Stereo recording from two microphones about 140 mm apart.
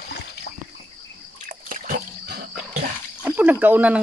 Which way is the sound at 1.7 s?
85° right.